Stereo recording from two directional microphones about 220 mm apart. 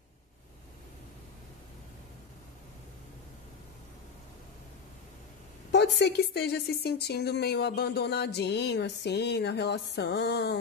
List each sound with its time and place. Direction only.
5.7 s a woman's voice: 50° left (ahead or behind)